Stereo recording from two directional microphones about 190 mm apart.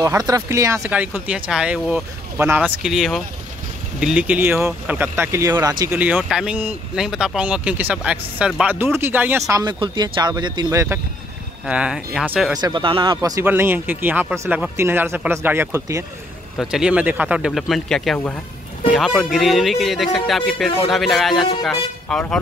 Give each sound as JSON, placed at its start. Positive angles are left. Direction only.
{"t": 0.0, "sound": "speech", "side_deg": -20}
{"t": 5.9, "sound": "speech", "side_deg": -10}
{"t": 11.6, "sound": "speech", "side_deg": -5}
{"t": 12.5, "sound": "speech", "side_deg": -25}
{"t": 16.5, "sound": "speech", "side_deg": -5}